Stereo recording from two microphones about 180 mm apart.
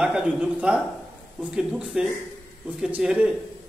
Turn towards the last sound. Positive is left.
turn(degrees=-5)  # may be behind; listen again after turning